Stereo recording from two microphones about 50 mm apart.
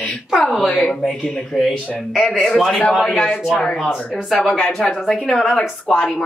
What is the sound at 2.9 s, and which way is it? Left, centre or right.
Speech, centre.